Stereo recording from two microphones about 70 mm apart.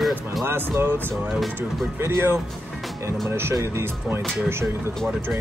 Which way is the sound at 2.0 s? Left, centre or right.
Right.